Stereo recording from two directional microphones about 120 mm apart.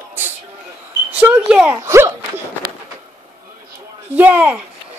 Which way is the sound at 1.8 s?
20° right (ahead or behind).